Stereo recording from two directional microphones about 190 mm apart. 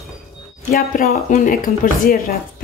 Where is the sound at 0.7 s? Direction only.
50° left (ahead or behind).